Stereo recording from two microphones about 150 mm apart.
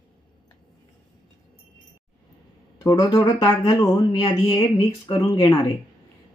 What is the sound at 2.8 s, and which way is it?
Speech, 25° left (ahead or behind).